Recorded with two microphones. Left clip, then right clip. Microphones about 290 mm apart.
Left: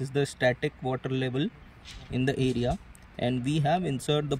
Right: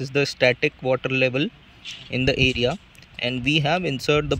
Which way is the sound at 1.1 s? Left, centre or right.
Right.